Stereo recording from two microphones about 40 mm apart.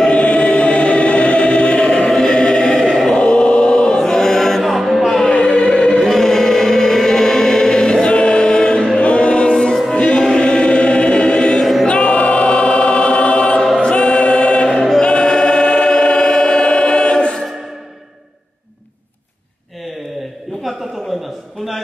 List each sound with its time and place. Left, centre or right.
0.1 s choir: left; by 5.2 s centre
5.2 s music: centre
5.9 s choir: centre
9.0 s choir: left
11.6 s choir: centre
11.9 s choir: left
14.8 s choir: centre
15.0 s choir: left
20.7 s a sound: centre